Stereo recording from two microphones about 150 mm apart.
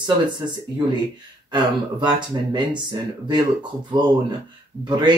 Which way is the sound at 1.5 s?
30° right (ahead or behind).